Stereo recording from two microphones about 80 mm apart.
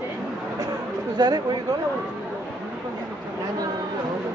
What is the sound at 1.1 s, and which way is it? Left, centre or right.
Speech, right.